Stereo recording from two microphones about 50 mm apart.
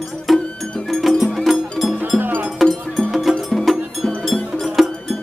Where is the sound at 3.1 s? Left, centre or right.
Centre.